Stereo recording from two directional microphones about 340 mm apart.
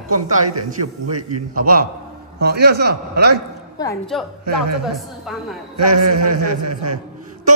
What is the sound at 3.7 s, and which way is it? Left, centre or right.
A woman's voice, centre.